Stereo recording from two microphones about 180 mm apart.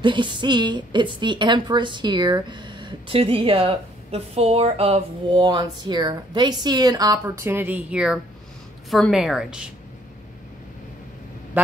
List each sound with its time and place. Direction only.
0.0 s a woman's voice: 25° right (ahead or behind); by 9.7 s 5° right (ahead or behind)
11.6 s quack: 10° right (ahead or behind)